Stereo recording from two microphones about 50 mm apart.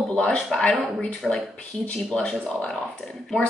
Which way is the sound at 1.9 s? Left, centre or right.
Centre.